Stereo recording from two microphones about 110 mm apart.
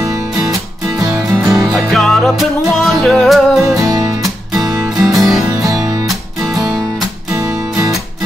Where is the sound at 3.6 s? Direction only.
30° right (ahead or behind).